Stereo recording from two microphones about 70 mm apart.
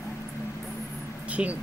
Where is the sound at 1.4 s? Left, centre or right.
Centre.